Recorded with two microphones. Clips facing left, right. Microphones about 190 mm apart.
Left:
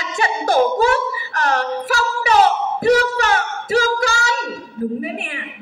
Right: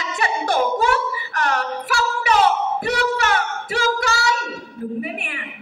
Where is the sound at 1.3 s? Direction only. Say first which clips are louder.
Left 3 dB; 30° left (ahead or behind).